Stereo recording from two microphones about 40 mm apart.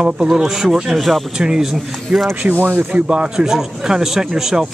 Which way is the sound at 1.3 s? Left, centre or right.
Centre.